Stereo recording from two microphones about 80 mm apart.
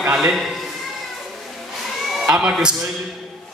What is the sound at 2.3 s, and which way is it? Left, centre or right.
Speech, centre.